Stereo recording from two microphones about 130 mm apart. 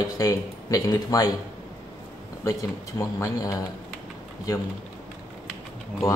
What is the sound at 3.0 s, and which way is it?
Speech, 25° left (ahead or behind).